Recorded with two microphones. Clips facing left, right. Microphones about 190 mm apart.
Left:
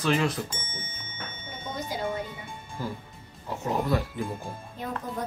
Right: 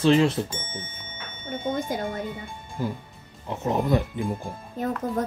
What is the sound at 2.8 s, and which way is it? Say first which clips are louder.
Speech: right 5 dB; 20° right (ahead or behind).